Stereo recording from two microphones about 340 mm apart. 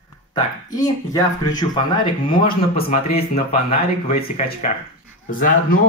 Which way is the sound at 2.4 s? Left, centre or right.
Left.